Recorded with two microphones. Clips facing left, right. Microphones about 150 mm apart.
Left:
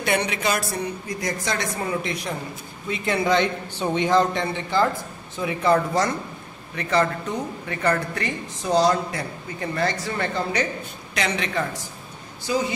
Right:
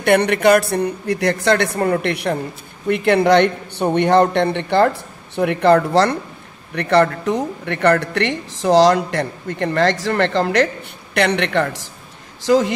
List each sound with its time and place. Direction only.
0.0 s a man's voice: 60° right (ahead or behind); by 10.7 s 90° right
11.1 s speech: 65° right (ahead or behind)
12.4 s speech: 90° right